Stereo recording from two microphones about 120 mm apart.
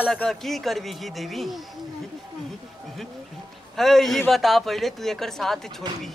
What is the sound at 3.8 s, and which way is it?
Speech, centre (ahead or behind).